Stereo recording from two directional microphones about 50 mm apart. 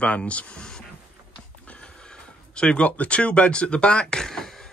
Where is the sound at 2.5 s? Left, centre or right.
Left.